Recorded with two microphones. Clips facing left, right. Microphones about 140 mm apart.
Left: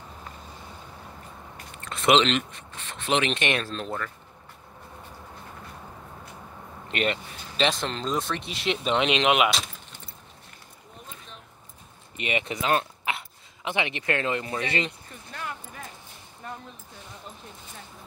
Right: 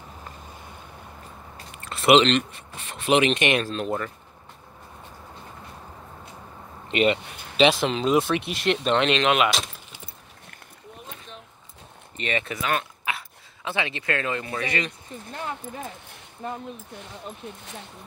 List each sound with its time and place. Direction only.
1.9 s a sound: 5° right (ahead or behind)
2.5 s speech: 10° right (ahead or behind)
6.9 s speech: 5° right (ahead or behind)
8.8 s speech: 10° left (ahead or behind)
9.5 s keys jangling: centre (ahead or behind)
12.2 s speech: 15° left (ahead or behind)
12.7 s dog: 25° left (ahead or behind)
13.7 s speech: 20° left (ahead or behind)
15.3 s speech: 25° right (ahead or behind)